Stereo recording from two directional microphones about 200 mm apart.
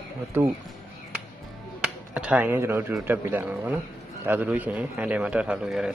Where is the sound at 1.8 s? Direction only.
5° right (ahead or behind).